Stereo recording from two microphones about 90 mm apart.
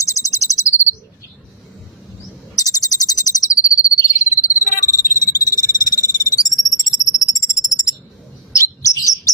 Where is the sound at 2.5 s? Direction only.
45° left (ahead or behind).